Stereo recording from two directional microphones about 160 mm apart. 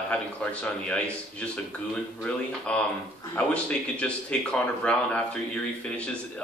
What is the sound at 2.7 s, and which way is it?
A man's voice, 5° left (ahead or behind).